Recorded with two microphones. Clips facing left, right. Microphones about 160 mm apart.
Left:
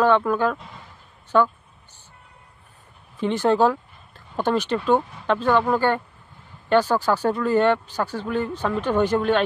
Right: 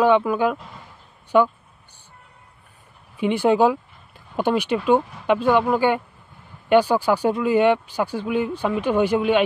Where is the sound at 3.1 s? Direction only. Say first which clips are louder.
Right 2 dB; 10° right (ahead or behind).